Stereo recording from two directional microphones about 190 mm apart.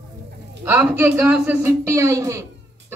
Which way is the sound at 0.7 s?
10° right (ahead or behind).